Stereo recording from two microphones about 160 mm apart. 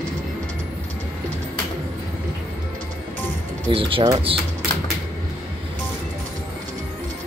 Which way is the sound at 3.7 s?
35° right (ahead or behind).